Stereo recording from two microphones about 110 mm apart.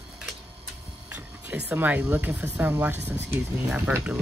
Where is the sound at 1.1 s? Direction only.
15° right (ahead or behind).